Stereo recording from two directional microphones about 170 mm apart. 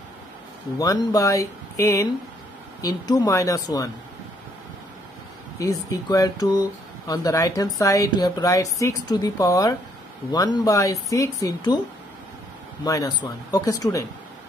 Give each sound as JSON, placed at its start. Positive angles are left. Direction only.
{"t": 0.7, "sound": "speech", "side_deg": 20}
{"t": 5.6, "sound": "speech", "side_deg": 20}
{"t": 12.8, "sound": "speech", "side_deg": 20}